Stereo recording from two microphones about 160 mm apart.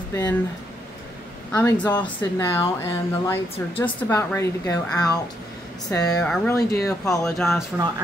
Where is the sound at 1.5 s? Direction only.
15° left (ahead or behind).